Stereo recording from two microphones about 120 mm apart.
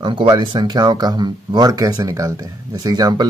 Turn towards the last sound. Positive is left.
turn(degrees=-35)  # may be behind; listen again after turning